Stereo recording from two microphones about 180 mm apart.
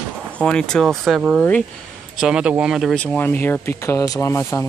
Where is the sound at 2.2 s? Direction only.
5° right (ahead or behind).